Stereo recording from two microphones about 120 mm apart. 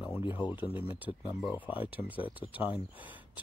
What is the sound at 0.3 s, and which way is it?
Speech, 15° right (ahead or behind).